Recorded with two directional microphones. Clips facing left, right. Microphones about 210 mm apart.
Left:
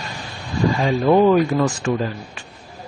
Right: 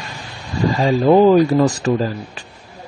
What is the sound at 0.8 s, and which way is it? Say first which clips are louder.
A man's voice: right 4 dB; 35° right (ahead or behind).